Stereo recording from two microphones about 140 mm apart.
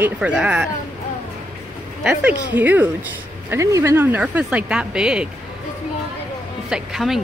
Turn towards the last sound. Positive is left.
turn(degrees=-5)  # may be behind; listen again after turning